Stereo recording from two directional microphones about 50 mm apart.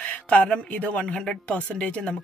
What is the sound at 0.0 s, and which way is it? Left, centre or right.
A woman's voice, left.